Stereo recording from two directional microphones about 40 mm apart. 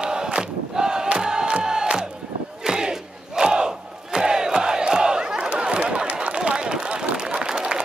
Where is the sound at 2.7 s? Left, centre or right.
Centre.